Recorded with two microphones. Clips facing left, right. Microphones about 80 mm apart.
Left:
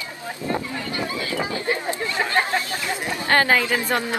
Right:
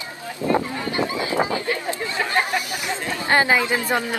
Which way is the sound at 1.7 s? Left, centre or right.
Left.